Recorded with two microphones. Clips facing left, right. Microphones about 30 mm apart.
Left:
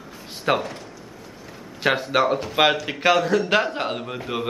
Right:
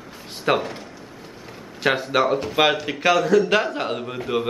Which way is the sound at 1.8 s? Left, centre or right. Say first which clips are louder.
Even; centre.